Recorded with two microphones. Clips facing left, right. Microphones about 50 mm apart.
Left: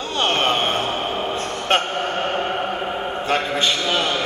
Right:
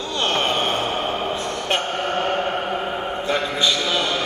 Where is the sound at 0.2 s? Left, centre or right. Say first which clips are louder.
Left 2 dB; left.